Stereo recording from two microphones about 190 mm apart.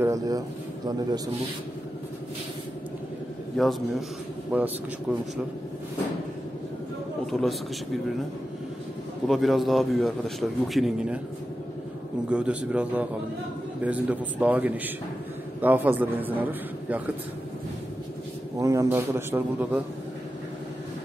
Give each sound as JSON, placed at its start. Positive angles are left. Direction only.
{"t": 0.0, "sound": "a sound", "side_deg": -15}
{"t": 3.6, "sound": "a man's voice", "side_deg": 0}
{"t": 7.2, "sound": "a man's voice", "side_deg": 0}
{"t": 9.3, "sound": "a man's voice", "side_deg": 0}
{"t": 12.3, "sound": "a man's voice", "side_deg": -5}
{"t": 18.6, "sound": "a man's voice", "side_deg": -15}